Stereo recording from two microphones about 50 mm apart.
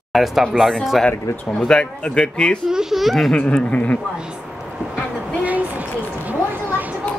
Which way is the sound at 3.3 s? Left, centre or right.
Left.